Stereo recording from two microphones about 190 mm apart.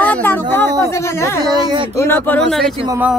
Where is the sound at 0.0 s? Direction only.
10° left (ahead or behind).